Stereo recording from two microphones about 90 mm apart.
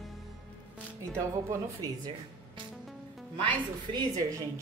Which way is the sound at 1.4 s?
45° right (ahead or behind).